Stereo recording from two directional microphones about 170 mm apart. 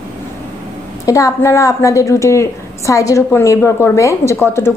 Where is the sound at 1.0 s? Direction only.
20° left (ahead or behind).